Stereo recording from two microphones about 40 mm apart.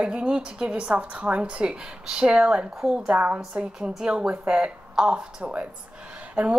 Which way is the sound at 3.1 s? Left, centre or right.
Right.